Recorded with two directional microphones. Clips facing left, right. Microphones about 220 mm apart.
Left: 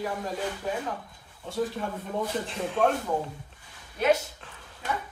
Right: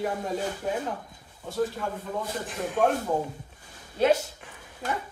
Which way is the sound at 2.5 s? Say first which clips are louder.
Right 1 dB; 5° right (ahead or behind).